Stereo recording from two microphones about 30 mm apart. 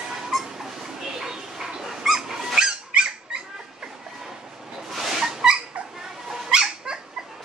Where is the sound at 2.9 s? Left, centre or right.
Right.